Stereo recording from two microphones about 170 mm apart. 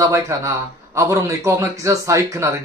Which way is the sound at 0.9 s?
15° right (ahead or behind).